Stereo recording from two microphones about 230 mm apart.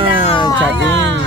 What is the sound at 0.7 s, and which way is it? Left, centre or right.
Speech, right.